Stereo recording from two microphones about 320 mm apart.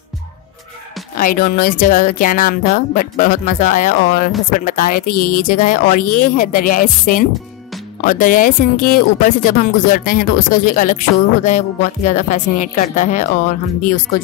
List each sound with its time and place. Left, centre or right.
1.1 s speech: left